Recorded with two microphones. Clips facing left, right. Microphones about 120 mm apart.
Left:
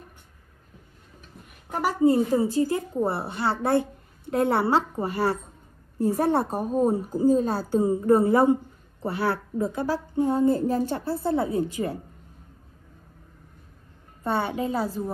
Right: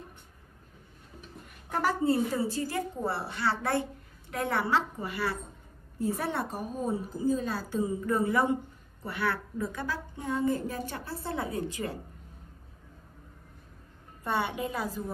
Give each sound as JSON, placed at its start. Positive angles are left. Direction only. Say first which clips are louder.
{"t": 1.7, "sound": "a woman's voice", "louder": "left 6 dB", "side_deg": 15}
{"t": 6.8, "sound": "a woman's voice", "louder": "left 9 dB", "side_deg": 45}
{"t": 14.2, "sound": "a woman's voice", "louder": "left 5 dB", "side_deg": 30}